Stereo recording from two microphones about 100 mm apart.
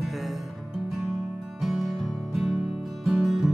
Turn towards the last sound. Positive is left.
turn(degrees=-5)  # may be behind; listen again after turning